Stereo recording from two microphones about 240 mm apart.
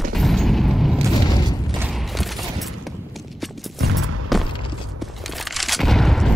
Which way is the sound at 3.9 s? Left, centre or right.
Right.